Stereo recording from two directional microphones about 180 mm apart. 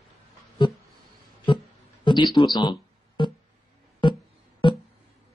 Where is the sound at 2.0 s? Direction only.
25° left (ahead or behind).